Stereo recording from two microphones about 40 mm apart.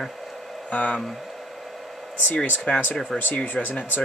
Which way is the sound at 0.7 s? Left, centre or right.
Left.